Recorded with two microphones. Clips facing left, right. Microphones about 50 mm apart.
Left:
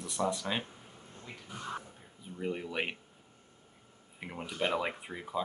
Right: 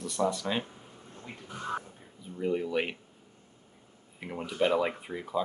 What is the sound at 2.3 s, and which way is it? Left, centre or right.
Speech, centre.